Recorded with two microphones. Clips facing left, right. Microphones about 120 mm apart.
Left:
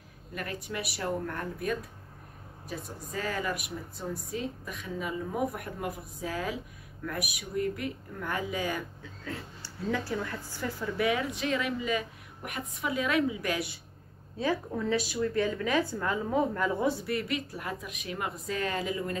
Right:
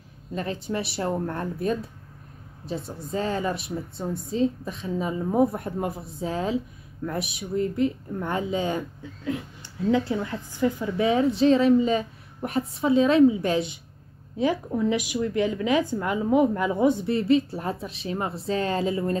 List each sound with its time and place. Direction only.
0.3 s speech: 25° right (ahead or behind)